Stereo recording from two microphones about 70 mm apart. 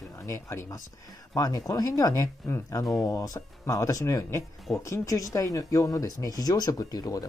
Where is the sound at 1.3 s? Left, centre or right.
Left.